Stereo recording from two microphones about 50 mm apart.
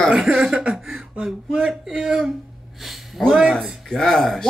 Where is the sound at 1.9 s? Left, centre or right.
Centre.